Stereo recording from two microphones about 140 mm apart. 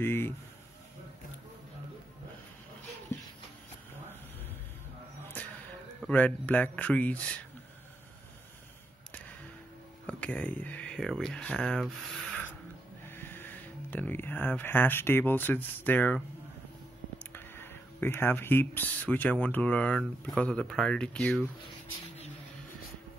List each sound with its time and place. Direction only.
0.0 s speech: 15° left (ahead or behind)
5.2 s a sound: 15° left (ahead or behind)
10.0 s speech: 10° left (ahead or behind)
17.2 s speech: 15° left (ahead or behind)